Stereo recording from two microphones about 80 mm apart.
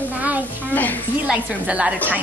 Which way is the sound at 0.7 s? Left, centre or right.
Left.